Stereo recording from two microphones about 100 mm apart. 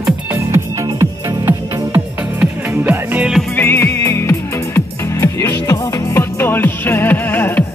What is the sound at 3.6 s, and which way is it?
Music, 20° left (ahead or behind).